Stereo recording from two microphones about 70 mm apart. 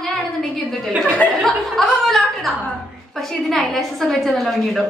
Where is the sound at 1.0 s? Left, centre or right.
Left.